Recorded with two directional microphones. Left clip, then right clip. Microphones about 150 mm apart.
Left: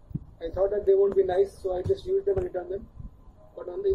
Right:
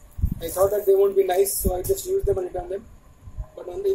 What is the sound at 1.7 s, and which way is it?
Speech, 20° right (ahead or behind).